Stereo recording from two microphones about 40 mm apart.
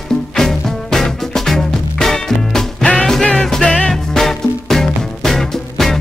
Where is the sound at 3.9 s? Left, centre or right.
Centre.